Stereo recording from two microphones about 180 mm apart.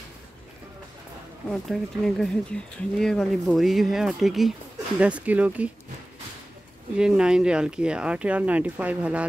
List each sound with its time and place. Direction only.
1.5 s speech: 5° left (ahead or behind)
7.0 s speech: 5° right (ahead or behind)